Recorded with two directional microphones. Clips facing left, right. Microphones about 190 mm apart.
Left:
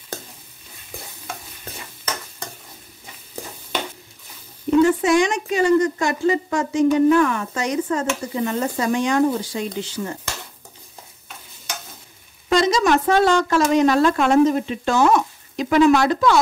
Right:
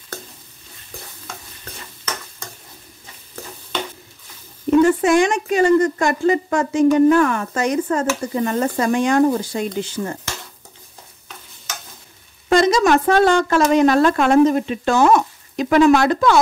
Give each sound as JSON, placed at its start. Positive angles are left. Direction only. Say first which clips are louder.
{"t": 4.8, "sound": "a woman's voice", "louder": "right 2 dB", "side_deg": -50}
{"t": 12.4, "sound": "a woman's voice", "louder": "right 3 dB", "side_deg": -50}